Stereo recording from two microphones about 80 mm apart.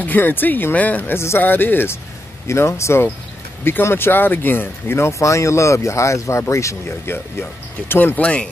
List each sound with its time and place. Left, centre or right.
0.0 s speech: left